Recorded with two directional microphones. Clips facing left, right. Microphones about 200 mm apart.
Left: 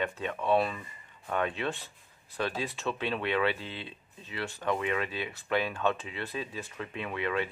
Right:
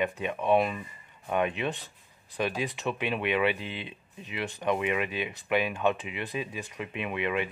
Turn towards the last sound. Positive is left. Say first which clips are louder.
# right 2 dB
turn(degrees=-15)  # may be behind; listen again after turning